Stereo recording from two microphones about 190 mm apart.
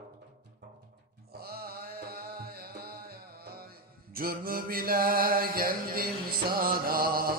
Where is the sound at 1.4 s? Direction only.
55° right (ahead or behind).